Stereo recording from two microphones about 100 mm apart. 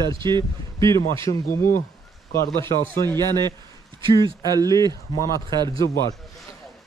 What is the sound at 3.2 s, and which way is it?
Speech, 45° right (ahead or behind).